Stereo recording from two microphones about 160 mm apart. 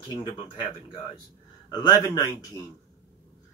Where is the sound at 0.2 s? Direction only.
30° left (ahead or behind).